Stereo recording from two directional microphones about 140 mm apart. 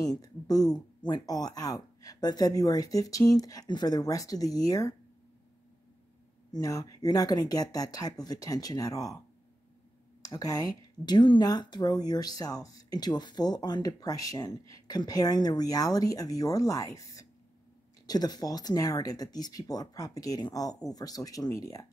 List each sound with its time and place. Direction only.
0.0 s speech: 25° left (ahead or behind)
6.5 s speech: 25° left (ahead or behind)
10.2 s speech: 25° left (ahead or behind)